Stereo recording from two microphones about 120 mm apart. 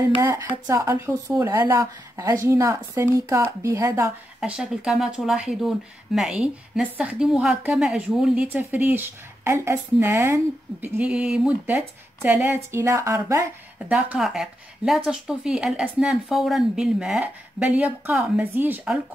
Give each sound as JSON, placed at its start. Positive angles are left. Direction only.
{"t": 0.7, "sound": "speech", "side_deg": -25}
{"t": 4.4, "sound": "a woman's voice", "side_deg": -5}
{"t": 8.5, "sound": "speech", "side_deg": -15}
{"t": 11.0, "sound": "a woman's voice", "side_deg": -10}
{"t": 13.8, "sound": "a woman's voice", "side_deg": -10}